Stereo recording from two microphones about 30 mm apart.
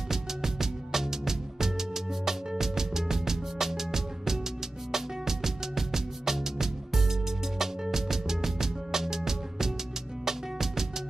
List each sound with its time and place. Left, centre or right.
0.1 s music: centre